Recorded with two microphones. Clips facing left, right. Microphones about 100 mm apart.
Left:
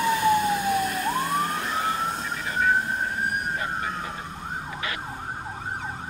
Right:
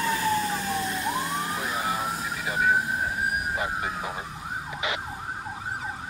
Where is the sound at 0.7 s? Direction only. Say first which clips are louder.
Left 3 dB; 25° right (ahead or behind); by 4.1 s 5° right (ahead or behind).